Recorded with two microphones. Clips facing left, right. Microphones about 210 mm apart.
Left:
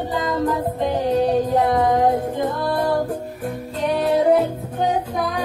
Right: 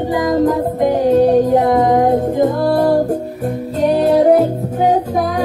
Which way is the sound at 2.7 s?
40° right (ahead or behind).